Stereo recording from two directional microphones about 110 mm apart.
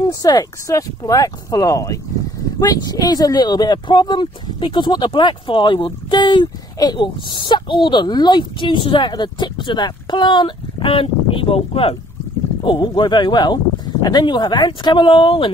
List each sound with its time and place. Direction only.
0.1 s speech: 35° left (ahead or behind); by 12.0 s 60° left (ahead or behind)
12.6 s speech: 45° left (ahead or behind)